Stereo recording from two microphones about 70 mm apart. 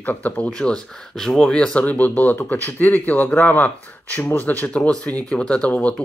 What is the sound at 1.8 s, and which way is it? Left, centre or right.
Speech, left.